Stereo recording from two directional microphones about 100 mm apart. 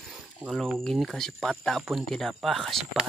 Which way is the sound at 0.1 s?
Centre (ahead or behind).